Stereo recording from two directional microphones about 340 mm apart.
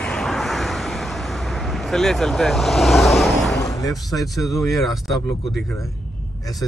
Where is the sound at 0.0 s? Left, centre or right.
Centre.